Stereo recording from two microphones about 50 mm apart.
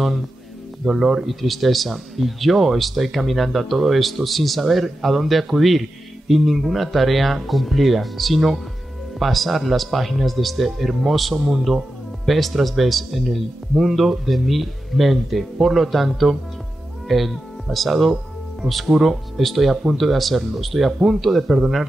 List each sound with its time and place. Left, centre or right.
0.8 s speech: centre
1.2 s speech: centre